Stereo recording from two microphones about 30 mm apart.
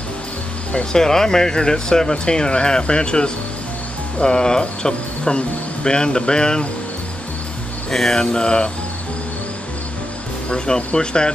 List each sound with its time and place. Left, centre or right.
0.9 s speech: centre
7.9 s speech: centre
8.2 s mantra: left
11.0 s speech: left